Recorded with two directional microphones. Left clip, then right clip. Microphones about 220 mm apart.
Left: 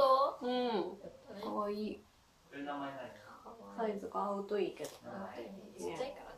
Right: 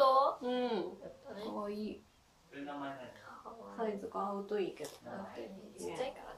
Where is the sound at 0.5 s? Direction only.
20° left (ahead or behind).